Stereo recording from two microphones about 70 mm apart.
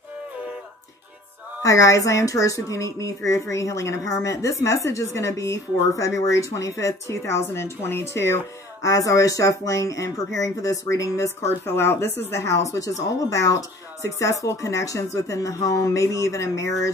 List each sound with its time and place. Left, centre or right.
1.6 s speech: left
8.8 s speech: left